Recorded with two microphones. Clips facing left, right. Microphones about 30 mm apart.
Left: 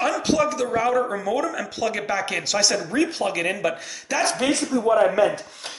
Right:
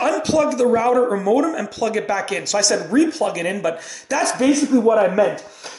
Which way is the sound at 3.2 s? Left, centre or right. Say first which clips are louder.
Right 2 dB; centre.